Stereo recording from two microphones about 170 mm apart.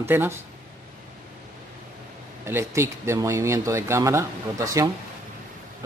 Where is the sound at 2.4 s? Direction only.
15° right (ahead or behind).